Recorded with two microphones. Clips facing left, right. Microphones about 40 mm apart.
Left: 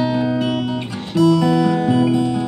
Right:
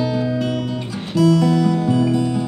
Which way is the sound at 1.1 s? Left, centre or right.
Centre.